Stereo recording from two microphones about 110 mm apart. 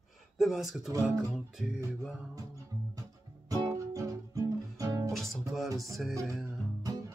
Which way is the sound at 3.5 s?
30° right (ahead or behind).